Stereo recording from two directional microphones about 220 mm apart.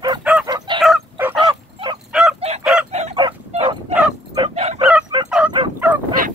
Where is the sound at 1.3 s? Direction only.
20° right (ahead or behind).